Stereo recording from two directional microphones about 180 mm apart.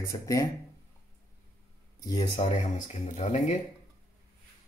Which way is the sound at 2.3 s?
40° left (ahead or behind).